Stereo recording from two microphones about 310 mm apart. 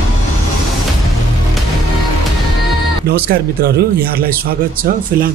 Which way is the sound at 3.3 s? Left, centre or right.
Right.